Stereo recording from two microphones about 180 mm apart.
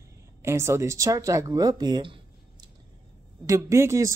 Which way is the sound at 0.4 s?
15° right (ahead or behind).